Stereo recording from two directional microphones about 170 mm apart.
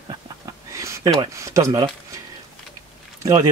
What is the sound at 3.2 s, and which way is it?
Speech, 25° right (ahead or behind).